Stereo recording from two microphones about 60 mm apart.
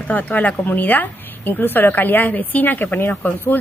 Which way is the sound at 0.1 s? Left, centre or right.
Left.